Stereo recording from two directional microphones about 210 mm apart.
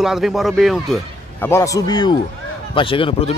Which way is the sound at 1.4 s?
15° left (ahead or behind).